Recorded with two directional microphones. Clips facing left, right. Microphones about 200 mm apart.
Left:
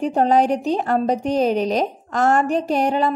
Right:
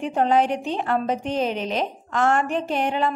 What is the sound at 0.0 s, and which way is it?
A woman's voice, 40° left (ahead or behind).